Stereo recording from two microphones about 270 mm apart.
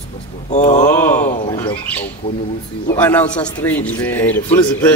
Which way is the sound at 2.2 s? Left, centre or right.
Centre.